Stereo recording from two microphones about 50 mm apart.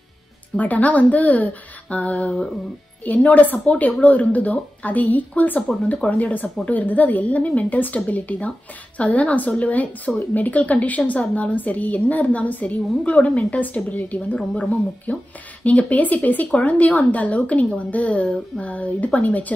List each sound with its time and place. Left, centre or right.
0.6 s a woman's voice: left